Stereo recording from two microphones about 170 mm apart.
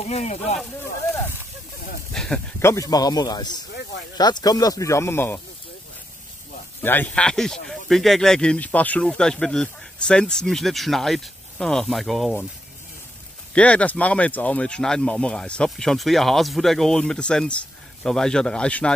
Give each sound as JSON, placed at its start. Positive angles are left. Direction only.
{"t": 0.0, "sound": "speech", "side_deg": 40}
{"t": 2.1, "sound": "a sound", "side_deg": 5}
{"t": 2.6, "sound": "speech", "side_deg": 20}
{"t": 6.8, "sound": "speech", "side_deg": 10}
{"t": 13.6, "sound": "speech", "side_deg": 5}